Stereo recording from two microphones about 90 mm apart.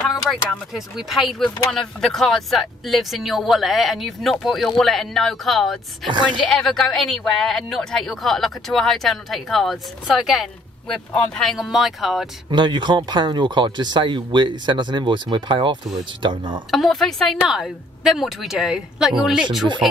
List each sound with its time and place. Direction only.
0.1 s speech: centre (ahead or behind)
12.4 s speech: 60° right (ahead or behind)
16.7 s speech: centre (ahead or behind)